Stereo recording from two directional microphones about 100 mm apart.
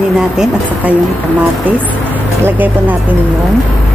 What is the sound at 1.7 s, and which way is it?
Speech, 15° right (ahead or behind).